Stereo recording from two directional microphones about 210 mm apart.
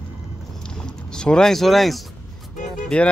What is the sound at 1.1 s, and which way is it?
Speech, 5° left (ahead or behind).